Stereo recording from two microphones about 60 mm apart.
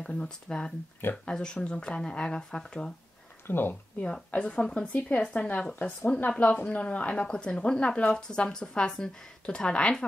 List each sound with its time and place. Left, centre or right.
0.0 s a woman's voice: centre
3.4 s speech: left
4.0 s a woman's voice: centre